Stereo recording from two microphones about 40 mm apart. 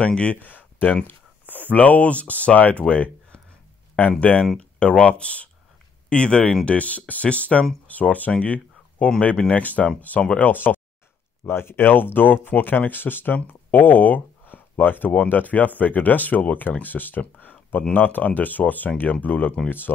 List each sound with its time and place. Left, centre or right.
0.0 s speech: left
0.4 s a sound: left
1.0 s speech: left
4.6 s speech: left
11.4 s speech: left
17.4 s a sound: left
17.9 s speech: left